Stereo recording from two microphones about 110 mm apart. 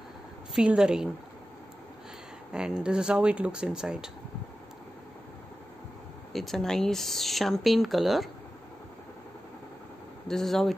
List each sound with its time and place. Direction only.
0.6 s speech: 5° right (ahead or behind)
2.5 s speech: 10° right (ahead or behind)
6.3 s speech: 5° left (ahead or behind)
10.2 s speech: 5° left (ahead or behind)